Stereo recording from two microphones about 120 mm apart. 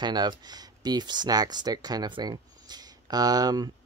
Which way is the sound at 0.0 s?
35° right (ahead or behind).